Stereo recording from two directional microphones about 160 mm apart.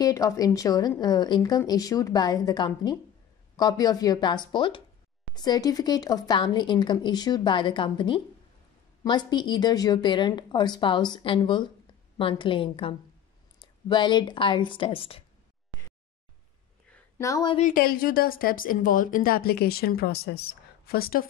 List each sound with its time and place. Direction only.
0.0 s a woman's voice: 20° left (ahead or behind)
17.2 s a woman's voice: 20° left (ahead or behind)
17.6 s speech: 55° left (ahead or behind)